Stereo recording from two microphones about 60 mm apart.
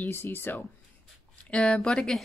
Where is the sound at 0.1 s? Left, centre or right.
Left.